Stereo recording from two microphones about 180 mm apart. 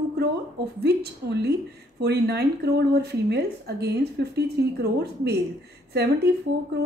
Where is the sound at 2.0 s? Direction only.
65° right (ahead or behind).